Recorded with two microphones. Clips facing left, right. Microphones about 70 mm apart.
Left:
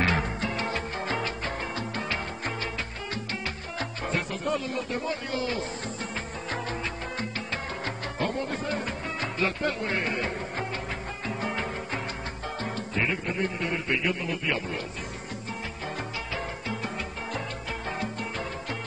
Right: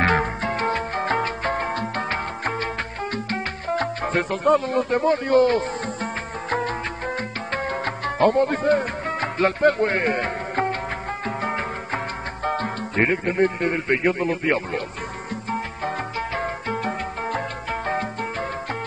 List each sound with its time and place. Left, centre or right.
0.0 s music: right
3.3 s speech: right
7.2 s music: right
12.4 s speech: right
16.3 s music: right